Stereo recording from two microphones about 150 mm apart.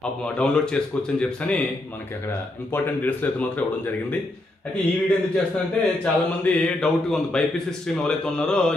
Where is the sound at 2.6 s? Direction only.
10° left (ahead or behind).